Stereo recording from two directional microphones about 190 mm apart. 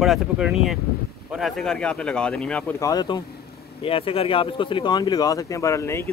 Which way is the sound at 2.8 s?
20° left (ahead or behind).